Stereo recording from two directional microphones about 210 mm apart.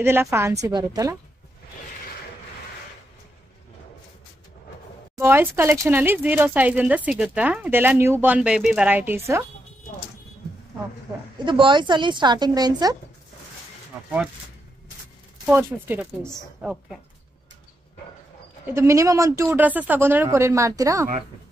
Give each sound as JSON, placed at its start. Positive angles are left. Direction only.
{"t": 0.0, "sound": "speech", "side_deg": -10}
{"t": 5.1, "sound": "speech", "side_deg": -10}
{"t": 11.3, "sound": "a woman's voice", "side_deg": -25}
{"t": 15.4, "sound": "a woman's voice", "side_deg": -10}
{"t": 18.7, "sound": "speech", "side_deg": -15}